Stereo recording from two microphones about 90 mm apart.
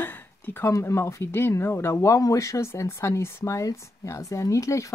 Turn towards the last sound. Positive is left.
turn(degrees=35)  # may be behind; listen again after turning